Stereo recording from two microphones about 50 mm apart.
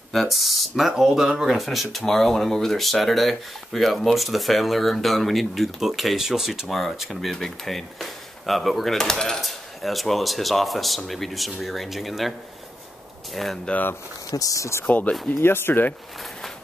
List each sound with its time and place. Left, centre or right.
0.1 s speech: centre
6.7 s speech: centre
14.4 s speech: left
15.4 s speech: left